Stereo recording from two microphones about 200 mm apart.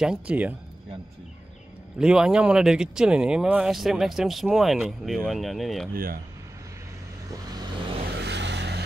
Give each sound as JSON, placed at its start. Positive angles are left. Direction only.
{"t": 0.0, "sound": "speech", "side_deg": -5}
{"t": 2.0, "sound": "speech", "side_deg": -5}
{"t": 8.1, "sound": "vehicle", "side_deg": -55}